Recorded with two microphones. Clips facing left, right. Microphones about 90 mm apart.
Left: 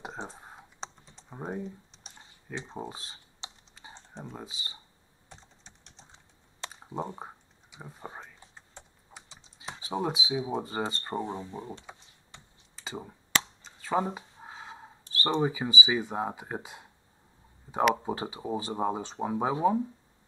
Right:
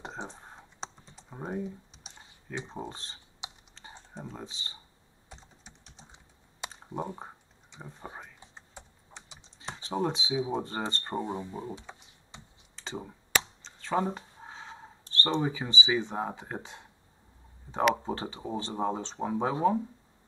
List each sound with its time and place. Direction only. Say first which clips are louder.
0.2 s computer keyboard: even; 5° left (ahead or behind)
1.3 s typing: right 1 dB; 5° left (ahead or behind)
2.7 s speech: even; 10° left (ahead or behind)
3.4 s computer keyboard: right 2 dB; 15° right (ahead or behind)
4.2 s speech: even; 5° left (ahead or behind)
5.3 s computer keyboard: right 1 dB; centre (ahead or behind)
6.6 s computer keyboard: right 1 dB; 15° right (ahead or behind)
7.7 s speech: left 1 dB; 5° left (ahead or behind)
8.2 s a sound: even; 10° right (ahead or behind)
9.6 s speech: right 1 dB; 5° left (ahead or behind)
11.3 s speech: right 2 dB; 5° right (ahead or behind)
12.3 s computer keyboard: right 3 dB; 20° right (ahead or behind)
12.7 s computer keyboard: right 1 dB; 5° left (ahead or behind)
17.6 s speech: left 1 dB; 10° left (ahead or behind)